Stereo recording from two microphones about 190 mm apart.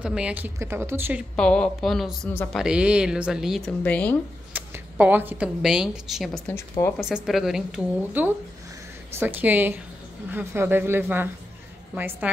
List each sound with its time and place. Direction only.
0.0 s a woman's voice: 5° right (ahead or behind)
1.3 s speech: 5° left (ahead or behind)
4.6 s speech: 10° right (ahead or behind)
6.8 s speech: 15° left (ahead or behind)
7.2 s a woman's voice: centre (ahead or behind)